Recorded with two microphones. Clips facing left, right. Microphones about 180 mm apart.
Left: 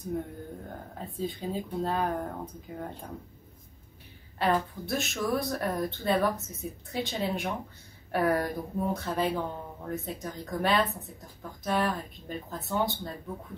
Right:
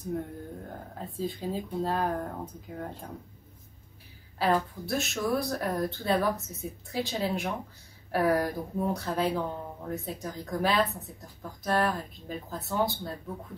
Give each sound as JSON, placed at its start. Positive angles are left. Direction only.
{"t": 0.1, "sound": "speech", "side_deg": 0}
{"t": 4.4, "sound": "speech", "side_deg": 0}